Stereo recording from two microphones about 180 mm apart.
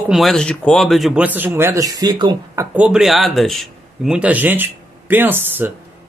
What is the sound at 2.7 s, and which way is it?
Speech, 5° right (ahead or behind).